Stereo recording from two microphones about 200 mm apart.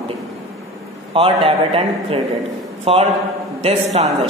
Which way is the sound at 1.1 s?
25° right (ahead or behind).